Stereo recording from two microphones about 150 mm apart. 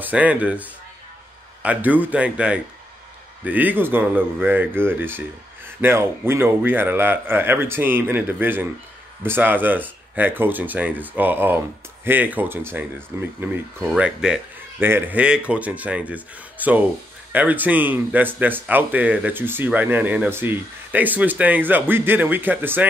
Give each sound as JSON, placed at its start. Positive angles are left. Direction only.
{"t": 0.0, "sound": "speech", "side_deg": -10}